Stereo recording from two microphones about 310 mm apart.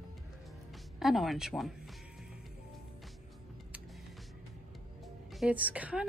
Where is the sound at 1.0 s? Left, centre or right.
Centre.